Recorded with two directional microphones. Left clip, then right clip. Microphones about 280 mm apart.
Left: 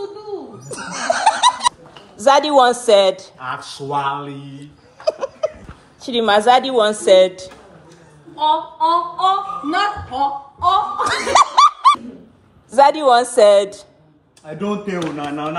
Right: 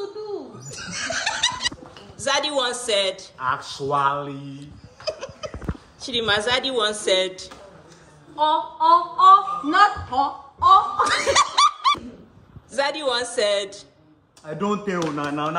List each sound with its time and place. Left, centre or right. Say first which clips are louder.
0.7 s snicker: left 9 dB; centre
2.2 s speech: left 11 dB; centre
5.0 s laughter: left 10 dB; centre
6.0 s a woman's voice: left 8 dB; centre
8.4 s a sound: left 3 dB; centre
12.7 s a woman's voice: left 11 dB; centre